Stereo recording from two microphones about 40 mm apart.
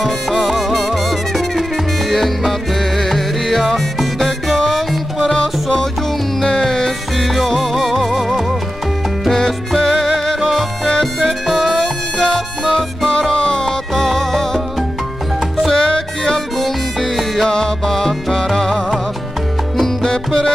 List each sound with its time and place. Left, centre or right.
0.5 s music: centre
5.3 s music: centre
7.2 s music: centre
9.8 s music: centre
11.2 s harmonica: centre
13.7 s music: centre
15.7 s music: centre
16.5 s music: centre
17.5 s music: centre